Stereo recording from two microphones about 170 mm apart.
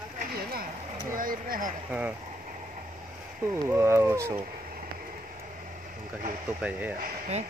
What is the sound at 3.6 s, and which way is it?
Speech, 15° right (ahead or behind).